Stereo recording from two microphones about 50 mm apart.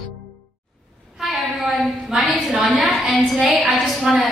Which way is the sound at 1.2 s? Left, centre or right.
Centre.